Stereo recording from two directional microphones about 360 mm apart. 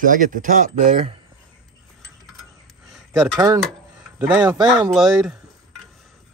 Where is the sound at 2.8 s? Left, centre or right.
Centre.